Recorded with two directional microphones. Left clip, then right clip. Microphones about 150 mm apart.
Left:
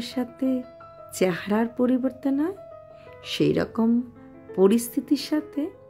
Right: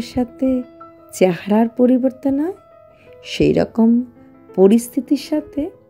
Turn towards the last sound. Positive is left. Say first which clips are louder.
# right 5 dB
turn(degrees=-15)  # may be behind; listen again after turning